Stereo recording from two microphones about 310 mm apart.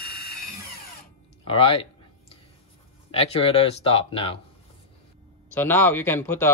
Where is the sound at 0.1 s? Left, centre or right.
Left.